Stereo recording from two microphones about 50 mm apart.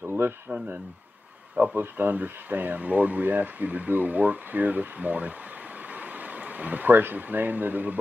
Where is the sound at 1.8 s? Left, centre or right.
Right.